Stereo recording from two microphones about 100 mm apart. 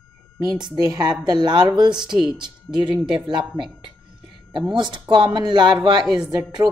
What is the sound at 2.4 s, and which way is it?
Speech, 50° right (ahead or behind).